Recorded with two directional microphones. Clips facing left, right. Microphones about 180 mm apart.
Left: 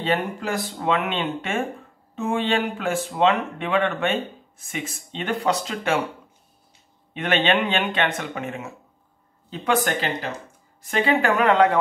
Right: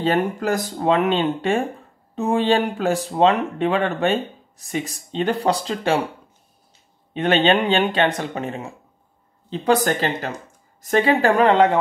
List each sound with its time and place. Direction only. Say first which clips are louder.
0.0 s speech: right 4 dB; 40° right (ahead or behind)
7.2 s speech: right 4 dB; 35° right (ahead or behind)